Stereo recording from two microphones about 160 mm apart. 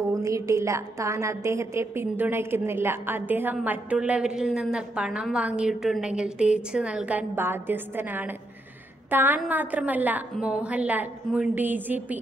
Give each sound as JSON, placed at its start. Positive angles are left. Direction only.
{"t": 0.1, "sound": "a woman's voice", "side_deg": -20}